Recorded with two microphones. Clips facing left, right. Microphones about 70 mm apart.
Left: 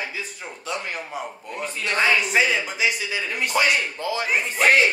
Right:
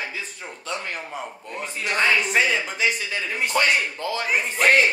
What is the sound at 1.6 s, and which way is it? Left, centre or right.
Speech, centre.